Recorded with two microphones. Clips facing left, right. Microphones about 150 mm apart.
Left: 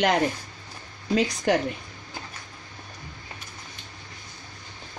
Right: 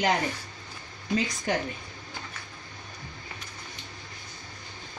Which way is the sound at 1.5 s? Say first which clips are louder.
Left 6 dB; 75° left (ahead or behind).